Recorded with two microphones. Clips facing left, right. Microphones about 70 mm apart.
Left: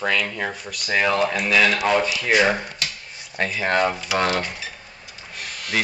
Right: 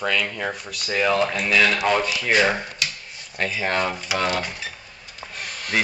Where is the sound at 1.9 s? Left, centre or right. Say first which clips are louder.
Left 1 dB; centre.